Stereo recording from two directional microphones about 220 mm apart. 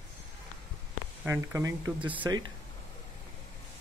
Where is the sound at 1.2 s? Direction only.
10° right (ahead or behind).